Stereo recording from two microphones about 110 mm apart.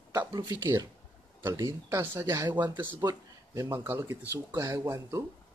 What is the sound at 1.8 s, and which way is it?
Speech, 20° right (ahead or behind).